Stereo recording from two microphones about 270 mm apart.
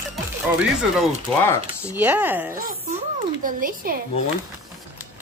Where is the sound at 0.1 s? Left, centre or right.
Centre.